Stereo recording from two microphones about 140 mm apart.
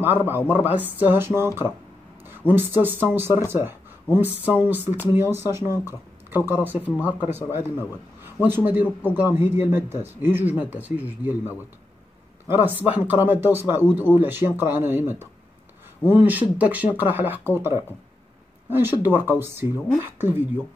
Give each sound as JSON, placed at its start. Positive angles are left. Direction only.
{"t": 0.0, "sound": "a man's voice", "side_deg": -15}